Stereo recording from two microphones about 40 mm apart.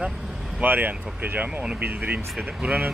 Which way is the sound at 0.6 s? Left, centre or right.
Right.